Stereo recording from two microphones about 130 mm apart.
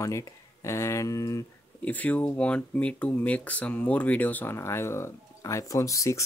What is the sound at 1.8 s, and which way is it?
Speech, 10° left (ahead or behind).